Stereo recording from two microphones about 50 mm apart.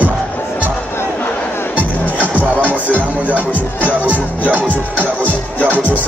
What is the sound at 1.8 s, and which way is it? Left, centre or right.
Music, right.